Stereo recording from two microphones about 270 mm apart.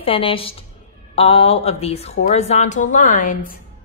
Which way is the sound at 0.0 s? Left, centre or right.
Centre.